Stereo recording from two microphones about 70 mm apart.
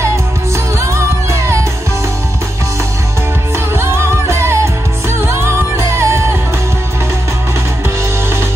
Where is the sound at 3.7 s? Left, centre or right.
Right.